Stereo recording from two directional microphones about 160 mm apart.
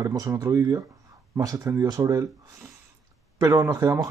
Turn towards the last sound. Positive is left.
turn(degrees=-25)  # may be behind; listen again after turning